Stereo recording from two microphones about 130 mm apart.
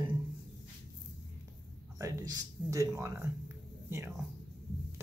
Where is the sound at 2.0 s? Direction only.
25° right (ahead or behind).